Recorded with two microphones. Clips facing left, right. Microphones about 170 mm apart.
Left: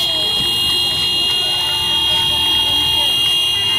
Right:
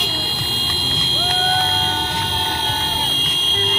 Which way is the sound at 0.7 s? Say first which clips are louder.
Right 2 dB; 20° left (ahead or behind).